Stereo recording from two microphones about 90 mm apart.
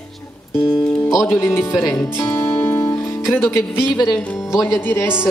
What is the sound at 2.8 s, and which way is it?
Music, 30° left (ahead or behind).